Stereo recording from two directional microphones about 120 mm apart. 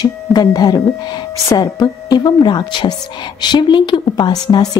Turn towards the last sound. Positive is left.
turn(degrees=35)  # may be behind; listen again after turning